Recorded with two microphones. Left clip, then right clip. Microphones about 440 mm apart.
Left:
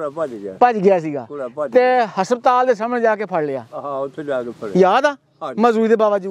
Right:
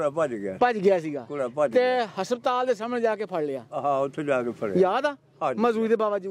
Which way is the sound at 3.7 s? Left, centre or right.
Right.